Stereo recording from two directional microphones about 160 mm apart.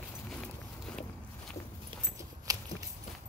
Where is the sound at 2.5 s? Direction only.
25° right (ahead or behind).